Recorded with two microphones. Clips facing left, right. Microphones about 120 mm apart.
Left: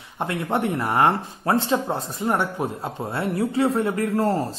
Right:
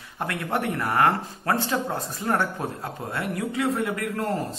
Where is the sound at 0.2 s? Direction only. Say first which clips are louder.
Left 3 dB; 25° left (ahead or behind).